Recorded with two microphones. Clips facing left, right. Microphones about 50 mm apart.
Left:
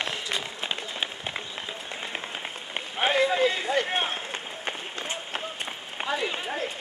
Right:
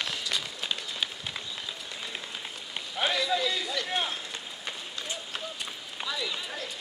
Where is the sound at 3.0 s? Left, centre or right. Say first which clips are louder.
Left 5 dB; left.